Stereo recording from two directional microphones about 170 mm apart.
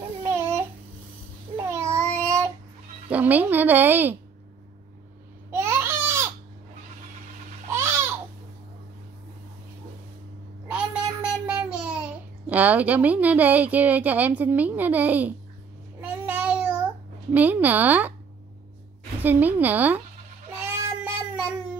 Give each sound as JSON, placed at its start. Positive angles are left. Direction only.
{"t": 0.2, "sound": "babbling", "side_deg": -15}
{"t": 1.6, "sound": "child singing", "side_deg": -15}
{"t": 3.1, "sound": "a woman's voice", "side_deg": -10}
{"t": 5.5, "sound": "a sound", "side_deg": -15}
{"t": 7.7, "sound": "a sound", "side_deg": -15}
{"t": 11.4, "sound": "child singing", "side_deg": -5}
{"t": 12.4, "sound": "a woman's voice", "side_deg": -10}
{"t": 16.0, "sound": "babbling", "side_deg": -10}
{"t": 19.2, "sound": "a woman's voice", "side_deg": -10}
{"t": 20.6, "sound": "child singing", "side_deg": -10}